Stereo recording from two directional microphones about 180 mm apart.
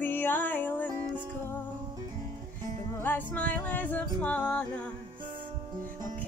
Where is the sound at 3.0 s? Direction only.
10° left (ahead or behind).